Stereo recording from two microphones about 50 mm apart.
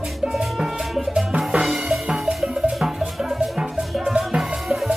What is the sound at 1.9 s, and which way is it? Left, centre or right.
Music, centre.